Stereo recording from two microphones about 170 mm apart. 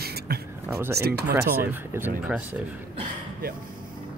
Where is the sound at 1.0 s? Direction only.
70° right (ahead or behind).